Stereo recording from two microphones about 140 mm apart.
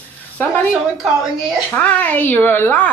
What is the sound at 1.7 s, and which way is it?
Speech, 10° left (ahead or behind).